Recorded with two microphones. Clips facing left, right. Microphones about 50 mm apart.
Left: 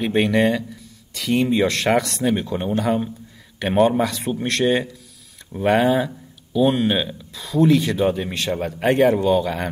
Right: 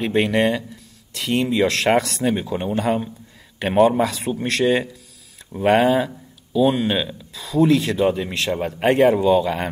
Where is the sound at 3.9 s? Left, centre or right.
Centre.